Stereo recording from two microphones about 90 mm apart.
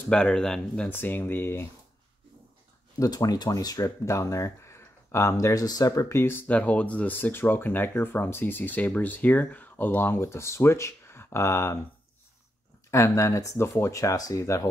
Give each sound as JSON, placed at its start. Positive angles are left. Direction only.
{"t": 0.1, "sound": "speech", "side_deg": 10}
{"t": 0.8, "sound": "speech", "side_deg": 20}
{"t": 3.0, "sound": "speech", "side_deg": 45}
{"t": 12.9, "sound": "speech", "side_deg": 35}